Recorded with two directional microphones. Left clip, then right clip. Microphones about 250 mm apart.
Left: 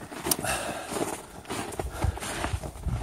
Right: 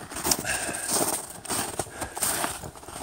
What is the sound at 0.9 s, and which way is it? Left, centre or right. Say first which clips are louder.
Horse: right 4 dB; right.